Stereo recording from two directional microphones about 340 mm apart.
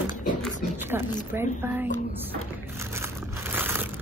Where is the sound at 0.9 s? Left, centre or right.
Centre.